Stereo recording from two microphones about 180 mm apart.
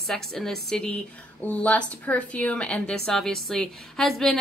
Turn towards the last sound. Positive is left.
turn(degrees=0)  # may be behind; listen again after turning